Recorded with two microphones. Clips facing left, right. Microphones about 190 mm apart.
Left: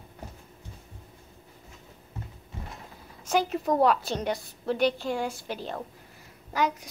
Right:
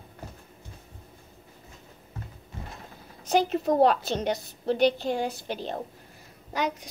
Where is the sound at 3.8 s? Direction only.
25° right (ahead or behind).